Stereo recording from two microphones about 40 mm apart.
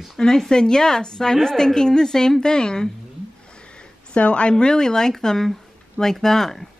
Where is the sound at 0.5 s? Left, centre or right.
Centre.